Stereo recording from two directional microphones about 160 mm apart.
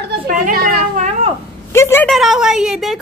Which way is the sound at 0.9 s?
45° right (ahead or behind).